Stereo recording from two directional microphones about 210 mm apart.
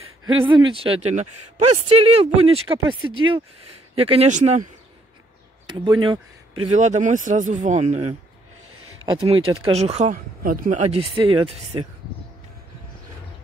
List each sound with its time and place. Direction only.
0.4 s speech: 25° right (ahead or behind)
5.7 s speech: 25° right (ahead or behind)
9.0 s speech: 20° right (ahead or behind); by 10.7 s 40° right (ahead or behind)
10.9 s speech: 25° right (ahead or behind)